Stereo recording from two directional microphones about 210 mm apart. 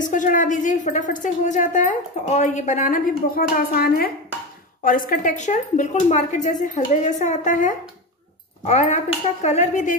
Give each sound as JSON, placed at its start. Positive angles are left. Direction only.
{"t": 0.0, "sound": "a woman's voice", "side_deg": 40}